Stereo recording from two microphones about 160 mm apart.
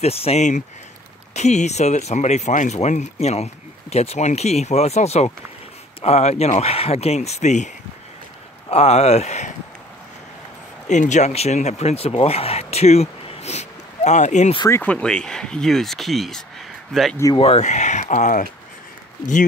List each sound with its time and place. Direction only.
0.0 s speech: 40° left (ahead or behind)
10.9 s speech: 50° left (ahead or behind)
14.7 s speech: 10° left (ahead or behind)
17.4 s speech: 40° left (ahead or behind)